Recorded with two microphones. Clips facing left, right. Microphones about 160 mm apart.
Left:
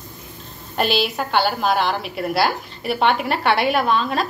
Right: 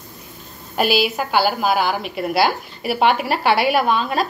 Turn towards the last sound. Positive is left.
turn(degrees=-5)  # may be behind; listen again after turning